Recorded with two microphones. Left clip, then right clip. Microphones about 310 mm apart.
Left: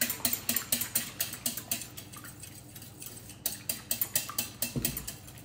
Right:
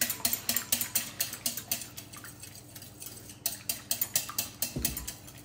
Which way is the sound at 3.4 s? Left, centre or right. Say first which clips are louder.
Right 2 dB; centre.